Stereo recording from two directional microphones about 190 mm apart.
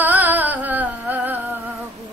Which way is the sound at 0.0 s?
10° right (ahead or behind).